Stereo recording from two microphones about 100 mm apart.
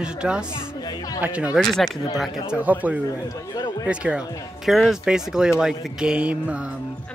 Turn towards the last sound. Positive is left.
turn(degrees=-10)  # may be behind; listen again after turning